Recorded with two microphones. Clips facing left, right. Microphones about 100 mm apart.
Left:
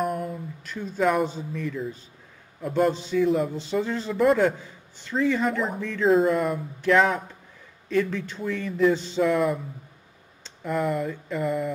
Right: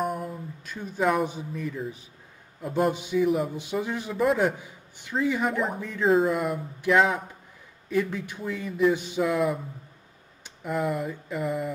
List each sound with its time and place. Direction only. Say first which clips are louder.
0.0 s a sound: left 2 dB; centre (ahead or behind)
0.8 s speech: left 2 dB; 5° right (ahead or behind)
2.7 s a man's voice: left 2 dB; 10° right (ahead or behind)
6.0 s speech: left 2 dB; centre (ahead or behind)
7.9 s speech: left 2 dB; 15° right (ahead or behind)
9.2 s speech: left 3 dB; centre (ahead or behind)
10.7 s speech: left 2 dB; centre (ahead or behind)
11.0 s speech: left 3 dB; 15° right (ahead or behind)
11.3 s speech: left 2 dB; 5° right (ahead or behind)